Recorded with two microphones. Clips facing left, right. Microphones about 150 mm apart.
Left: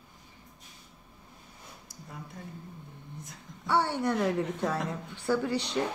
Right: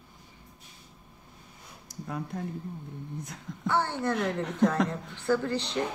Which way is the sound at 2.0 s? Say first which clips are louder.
Right 10 dB; 75° right (ahead or behind).